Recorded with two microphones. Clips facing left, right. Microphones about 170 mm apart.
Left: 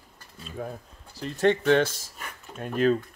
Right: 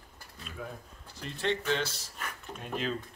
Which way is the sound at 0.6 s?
45° left (ahead or behind).